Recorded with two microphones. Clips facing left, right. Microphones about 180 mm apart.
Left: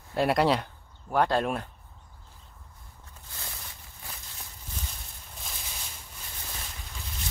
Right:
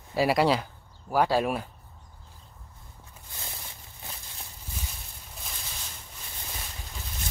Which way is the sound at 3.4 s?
25° right (ahead or behind).